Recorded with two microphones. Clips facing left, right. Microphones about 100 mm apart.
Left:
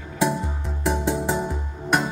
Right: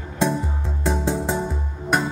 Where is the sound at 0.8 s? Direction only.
15° left (ahead or behind).